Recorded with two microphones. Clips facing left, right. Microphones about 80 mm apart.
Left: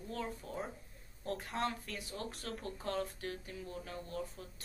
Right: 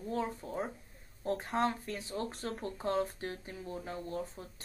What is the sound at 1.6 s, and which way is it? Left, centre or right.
Speech, right.